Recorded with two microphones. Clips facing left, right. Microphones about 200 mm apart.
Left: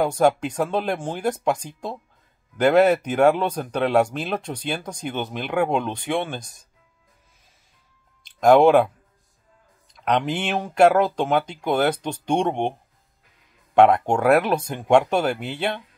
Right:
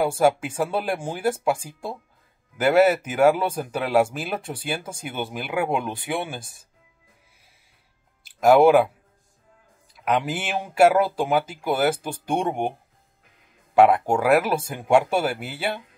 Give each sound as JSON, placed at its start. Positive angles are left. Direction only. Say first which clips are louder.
{"t": 0.0, "sound": "speech", "louder": "left 1 dB", "side_deg": -5}
{"t": 8.2, "sound": "speech", "louder": "left 1 dB", "side_deg": -5}
{"t": 9.9, "sound": "speech", "louder": "left 1 dB", "side_deg": -5}
{"t": 13.7, "sound": "speech", "louder": "left 1 dB", "side_deg": -5}